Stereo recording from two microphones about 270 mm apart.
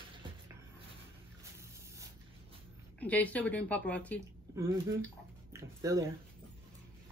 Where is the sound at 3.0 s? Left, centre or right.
Centre.